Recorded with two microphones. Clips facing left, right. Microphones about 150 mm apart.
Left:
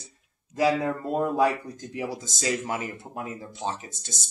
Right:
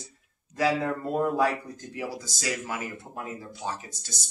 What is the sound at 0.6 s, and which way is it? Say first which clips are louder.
Speech: left 2 dB; 20° left (ahead or behind).